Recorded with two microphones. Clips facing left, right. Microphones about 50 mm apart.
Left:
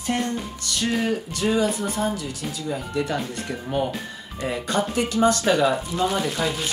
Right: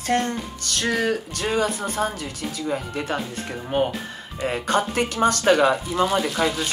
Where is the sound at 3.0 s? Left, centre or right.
Right.